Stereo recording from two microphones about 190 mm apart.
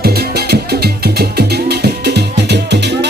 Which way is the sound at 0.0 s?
55° right (ahead or behind).